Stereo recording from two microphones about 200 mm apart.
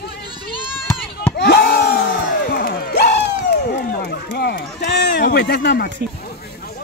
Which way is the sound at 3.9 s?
55° left (ahead or behind).